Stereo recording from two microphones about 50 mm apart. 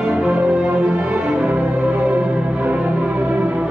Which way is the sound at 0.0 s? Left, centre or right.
Right.